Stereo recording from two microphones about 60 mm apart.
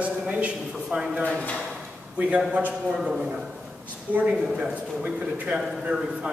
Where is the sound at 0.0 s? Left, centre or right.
Right.